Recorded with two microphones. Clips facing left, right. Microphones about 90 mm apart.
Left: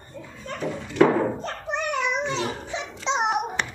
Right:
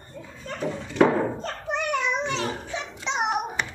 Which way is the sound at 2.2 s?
20° left (ahead or behind).